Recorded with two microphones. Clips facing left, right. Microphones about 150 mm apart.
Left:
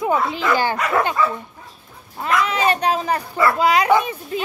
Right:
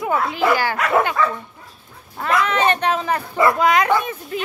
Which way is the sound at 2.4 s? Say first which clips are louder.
Right 2 dB; 10° left (ahead or behind).